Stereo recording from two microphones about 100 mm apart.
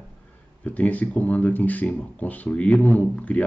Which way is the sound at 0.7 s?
15° left (ahead or behind).